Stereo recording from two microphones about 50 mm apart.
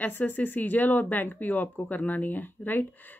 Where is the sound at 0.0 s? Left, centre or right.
Left.